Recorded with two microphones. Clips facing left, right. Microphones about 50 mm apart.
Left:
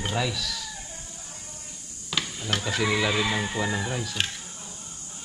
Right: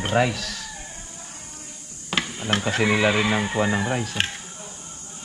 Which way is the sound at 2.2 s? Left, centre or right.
Right.